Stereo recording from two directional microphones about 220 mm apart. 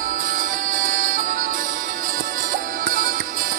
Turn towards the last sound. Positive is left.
turn(degrees=-35)  # may be behind; listen again after turning